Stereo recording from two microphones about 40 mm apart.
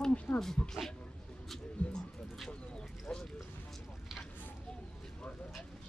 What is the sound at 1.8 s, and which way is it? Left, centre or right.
Speech, left.